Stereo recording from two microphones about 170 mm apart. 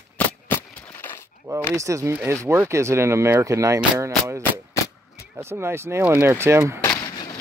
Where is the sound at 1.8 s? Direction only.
20° right (ahead or behind).